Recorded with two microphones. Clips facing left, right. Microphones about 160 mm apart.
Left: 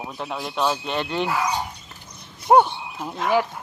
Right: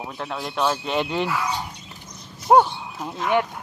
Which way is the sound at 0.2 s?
5° left (ahead or behind).